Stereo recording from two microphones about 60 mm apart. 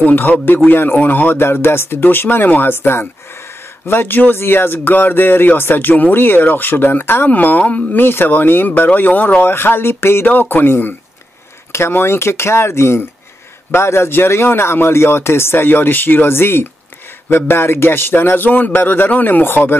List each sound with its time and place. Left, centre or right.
0.0 s speech: left
11.7 s speech: left